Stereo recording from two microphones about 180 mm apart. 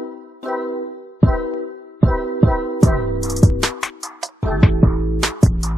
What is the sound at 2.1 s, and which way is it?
Music, centre (ahead or behind).